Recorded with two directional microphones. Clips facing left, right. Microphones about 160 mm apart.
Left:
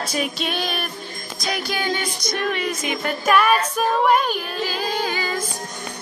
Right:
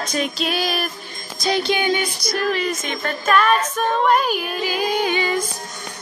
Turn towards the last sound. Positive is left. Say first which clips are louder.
# right 4 dB
turn(degrees=-20)  # may be behind; listen again after turning